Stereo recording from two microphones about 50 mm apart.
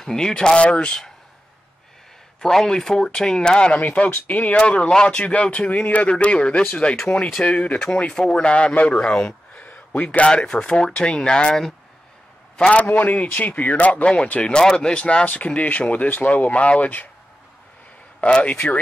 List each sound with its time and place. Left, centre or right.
0.0 s speech: centre
2.4 s speech: centre
3.8 s speech: left
7.9 s speech: centre
9.6 s a man's voice: left
12.9 s speech: left
18.2 s speech: left